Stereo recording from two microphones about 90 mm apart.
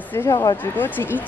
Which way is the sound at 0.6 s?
20° left (ahead or behind).